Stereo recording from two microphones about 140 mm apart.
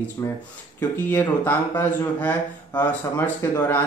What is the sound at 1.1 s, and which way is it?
A man's voice, 15° left (ahead or behind).